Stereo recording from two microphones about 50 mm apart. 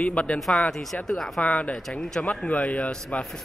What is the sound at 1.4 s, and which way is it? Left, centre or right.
Speech, left.